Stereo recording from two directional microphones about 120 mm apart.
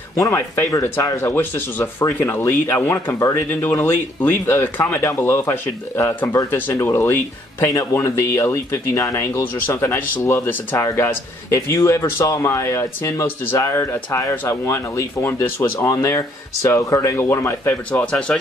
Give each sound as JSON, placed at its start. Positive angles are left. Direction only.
{"t": 0.2, "sound": "speech", "side_deg": 25}